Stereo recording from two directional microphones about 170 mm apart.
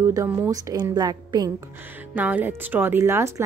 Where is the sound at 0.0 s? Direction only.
15° right (ahead or behind).